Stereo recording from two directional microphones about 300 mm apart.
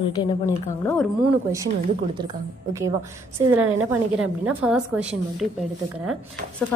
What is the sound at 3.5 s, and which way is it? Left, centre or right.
Speech, right.